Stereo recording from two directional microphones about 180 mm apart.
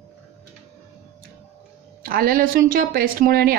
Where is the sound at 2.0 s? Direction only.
50° right (ahead or behind).